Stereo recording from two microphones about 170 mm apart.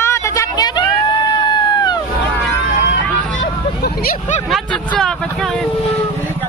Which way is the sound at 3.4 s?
60° left (ahead or behind).